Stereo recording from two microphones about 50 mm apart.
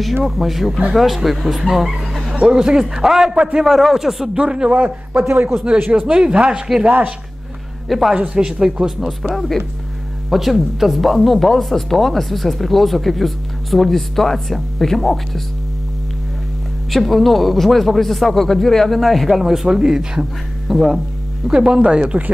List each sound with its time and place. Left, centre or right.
0.0 s a man's voice: centre
4.7 s a man's voice: right
6.1 s speech: centre
7.9 s speech: centre
8.4 s a man's voice: centre
8.8 s speech: centre
16.9 s speech: centre; by 22.3 s right